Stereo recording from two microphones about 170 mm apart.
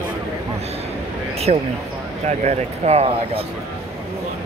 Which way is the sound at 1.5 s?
40° right (ahead or behind).